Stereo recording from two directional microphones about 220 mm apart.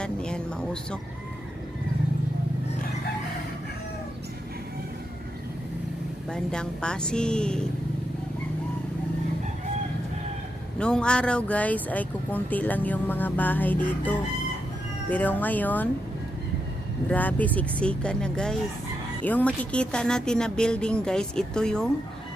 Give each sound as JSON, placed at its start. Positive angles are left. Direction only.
{"t": 0.0, "sound": "speech", "side_deg": 5}
{"t": 6.3, "sound": "speech", "side_deg": 5}
{"t": 10.8, "sound": "speech", "side_deg": 5}
{"t": 17.1, "sound": "speech", "side_deg": 5}